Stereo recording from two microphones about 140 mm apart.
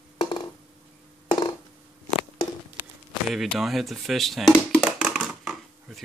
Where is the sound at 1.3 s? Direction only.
30° left (ahead or behind).